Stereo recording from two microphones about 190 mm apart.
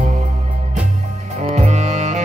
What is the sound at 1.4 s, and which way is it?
Music, 40° right (ahead or behind).